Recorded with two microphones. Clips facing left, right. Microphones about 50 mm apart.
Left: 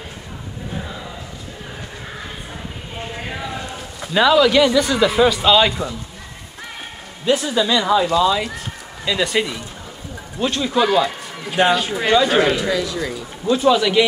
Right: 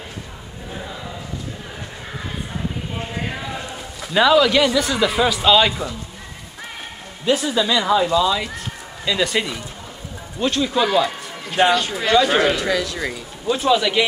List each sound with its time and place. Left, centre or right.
0.7 s a sound: centre
2.1 s a sound: centre
7.2 s speech: centre
12.3 s speech: centre
12.6 s speech: right
13.7 s speech: centre